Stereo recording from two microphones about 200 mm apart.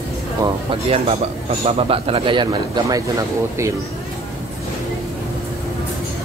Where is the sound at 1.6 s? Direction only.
30° right (ahead or behind).